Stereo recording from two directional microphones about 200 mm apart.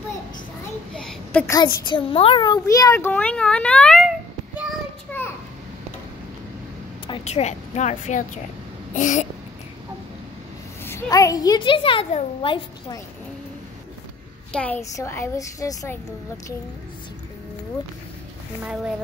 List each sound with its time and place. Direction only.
0.9 s a sound: 5° left (ahead or behind)
1.9 s a child's voice: 25° left (ahead or behind); by 4.1 s 5° left (ahead or behind)
5.2 s a sound: 10° left (ahead or behind)
7.1 s a woman's voice: 30° left (ahead or behind)
8.9 s babbling: 40° left (ahead or behind)
10.8 s a woman's voice: 15° left (ahead or behind)
14.5 s a child's voice: 5° left (ahead or behind)
18.6 s speech: 5° right (ahead or behind)